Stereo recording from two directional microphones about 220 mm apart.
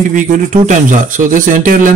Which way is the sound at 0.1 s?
35° right (ahead or behind).